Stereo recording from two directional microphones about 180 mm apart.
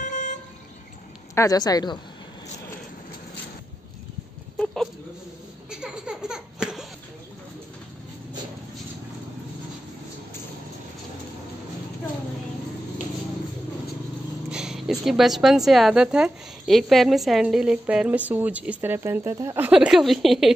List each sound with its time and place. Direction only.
0.0 s vehicle: 45° left (ahead or behind)
1.3 s a woman's voice: 20° left (ahead or behind)
5.7 s a sound: 5° right (ahead or behind)
14.5 s a woman's voice: 5° right (ahead or behind)